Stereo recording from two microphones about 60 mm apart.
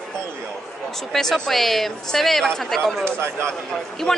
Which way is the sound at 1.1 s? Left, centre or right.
Centre.